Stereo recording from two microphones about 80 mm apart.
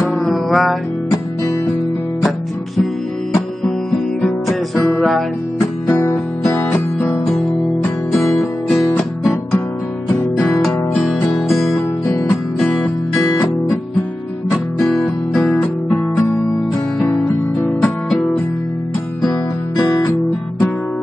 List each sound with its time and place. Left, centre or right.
0.0 s music: centre
4.2 s music: centre
5.9 s music: left
8.1 s music: centre
11.0 s music: centre
15.3 s music: centre
17.6 s music: centre